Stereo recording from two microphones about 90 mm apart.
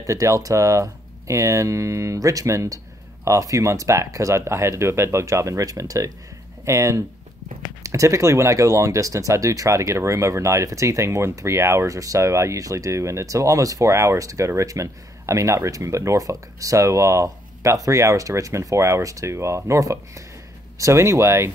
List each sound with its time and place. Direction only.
0.0 s speech: 35° right (ahead or behind)